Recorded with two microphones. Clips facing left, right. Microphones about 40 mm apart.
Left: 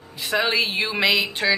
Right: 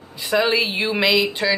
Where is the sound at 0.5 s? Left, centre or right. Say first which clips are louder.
Right 2 dB; centre.